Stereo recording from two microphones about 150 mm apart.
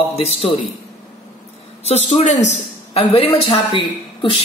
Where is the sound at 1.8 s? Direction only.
45° left (ahead or behind).